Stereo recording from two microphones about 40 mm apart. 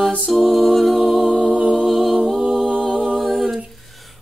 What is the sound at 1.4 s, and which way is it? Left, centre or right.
Music, right.